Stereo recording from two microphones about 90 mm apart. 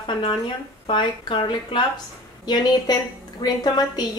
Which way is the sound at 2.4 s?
50° left (ahead or behind).